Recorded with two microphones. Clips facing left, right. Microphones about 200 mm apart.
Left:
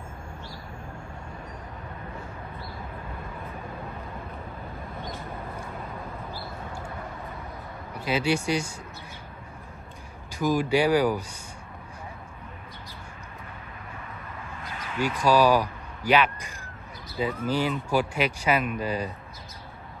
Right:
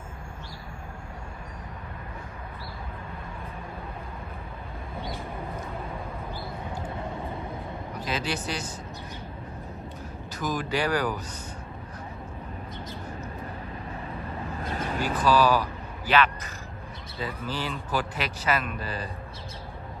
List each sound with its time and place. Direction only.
8.0 s a man's voice: 10° left (ahead or behind)
10.4 s a man's voice: 10° left (ahead or behind)
14.6 s a sound: 45° right (ahead or behind)
15.1 s a man's voice: 10° left (ahead or behind)